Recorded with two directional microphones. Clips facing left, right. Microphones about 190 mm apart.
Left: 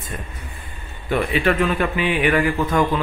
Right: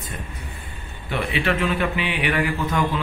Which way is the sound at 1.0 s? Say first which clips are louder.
Left 4 dB; 45° left (ahead or behind).